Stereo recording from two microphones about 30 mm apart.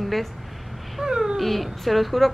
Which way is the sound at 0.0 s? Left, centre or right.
Centre.